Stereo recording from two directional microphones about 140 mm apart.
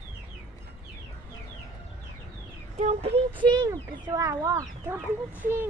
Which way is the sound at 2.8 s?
50° right (ahead or behind).